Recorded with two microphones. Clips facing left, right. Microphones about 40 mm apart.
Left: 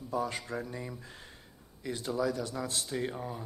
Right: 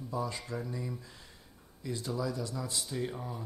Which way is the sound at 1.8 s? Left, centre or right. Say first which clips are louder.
Left 3 dB; left.